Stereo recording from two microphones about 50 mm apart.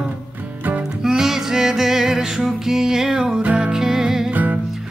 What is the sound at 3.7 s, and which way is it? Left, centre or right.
Music, centre.